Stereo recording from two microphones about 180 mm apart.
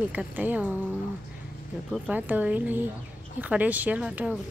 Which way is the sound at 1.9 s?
10° right (ahead or behind).